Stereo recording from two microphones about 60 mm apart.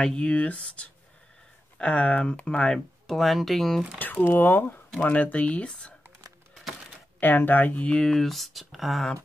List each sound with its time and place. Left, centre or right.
0.0 s speech: centre
4.3 s speech: left; by 5.9 s centre
7.2 s speech: left
8.0 s speech: centre